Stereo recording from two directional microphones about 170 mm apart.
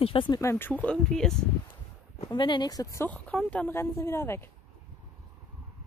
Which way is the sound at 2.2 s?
25° left (ahead or behind).